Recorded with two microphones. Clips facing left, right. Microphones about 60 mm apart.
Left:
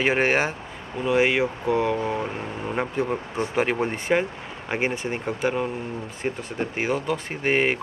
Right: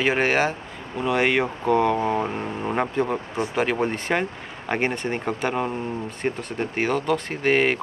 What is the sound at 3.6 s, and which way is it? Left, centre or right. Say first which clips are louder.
Speech: right 1 dB; centre.